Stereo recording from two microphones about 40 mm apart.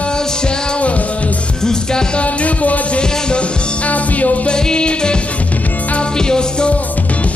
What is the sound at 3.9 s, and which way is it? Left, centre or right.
Music, left.